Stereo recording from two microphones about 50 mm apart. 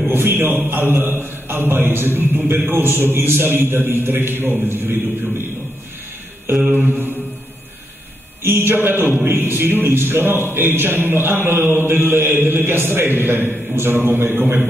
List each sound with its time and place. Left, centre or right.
0.1 s a sound: right
0.7 s a man's voice: right
6.6 s a man's voice: right
8.4 s a man's voice: right